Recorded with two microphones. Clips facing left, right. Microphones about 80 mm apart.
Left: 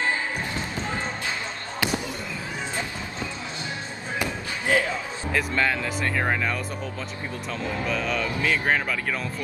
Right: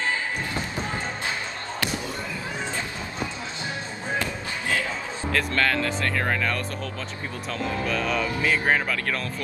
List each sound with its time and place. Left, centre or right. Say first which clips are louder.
4.2 s a sound: left 1 dB; left
5.3 s speech: even; centre
8.2 s speech: right 1 dB; centre